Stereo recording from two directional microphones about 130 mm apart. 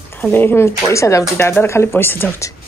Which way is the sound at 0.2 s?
15° left (ahead or behind).